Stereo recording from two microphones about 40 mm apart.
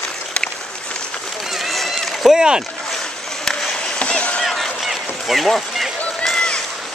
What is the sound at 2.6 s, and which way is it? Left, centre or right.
Boat, centre.